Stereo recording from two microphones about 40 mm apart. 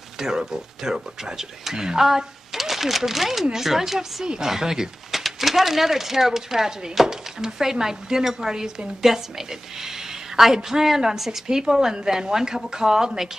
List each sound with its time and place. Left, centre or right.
0.2 s speech: centre